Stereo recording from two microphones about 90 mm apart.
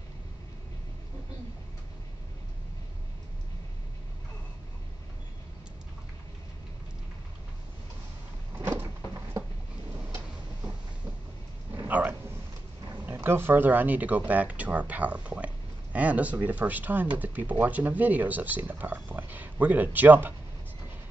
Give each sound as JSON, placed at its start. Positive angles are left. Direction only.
{"t": 8.5, "sound": "sliding door", "side_deg": -20}
{"t": 11.9, "sound": "dog", "side_deg": -20}
{"t": 13.1, "sound": "speech", "side_deg": -25}